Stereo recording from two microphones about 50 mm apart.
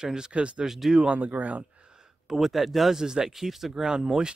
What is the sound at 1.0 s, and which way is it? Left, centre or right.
Speech, right.